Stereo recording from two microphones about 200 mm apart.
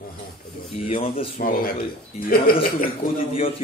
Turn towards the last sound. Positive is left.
turn(degrees=30)  # may be behind; listen again after turning